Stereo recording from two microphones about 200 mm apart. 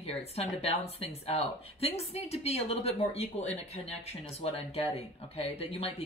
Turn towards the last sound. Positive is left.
turn(degrees=30)  # may be behind; listen again after turning